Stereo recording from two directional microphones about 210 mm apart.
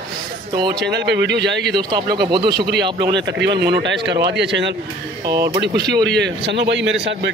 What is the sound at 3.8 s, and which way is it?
Speech, 55° right (ahead or behind).